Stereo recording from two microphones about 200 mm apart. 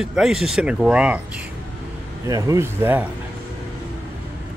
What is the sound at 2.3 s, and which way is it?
Speech, 15° right (ahead or behind).